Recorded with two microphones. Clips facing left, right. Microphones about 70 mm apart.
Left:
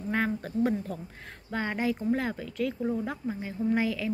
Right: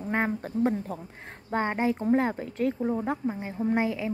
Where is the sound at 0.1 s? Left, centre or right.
Right.